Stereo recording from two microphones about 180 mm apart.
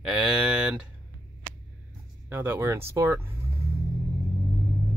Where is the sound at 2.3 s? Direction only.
10° right (ahead or behind).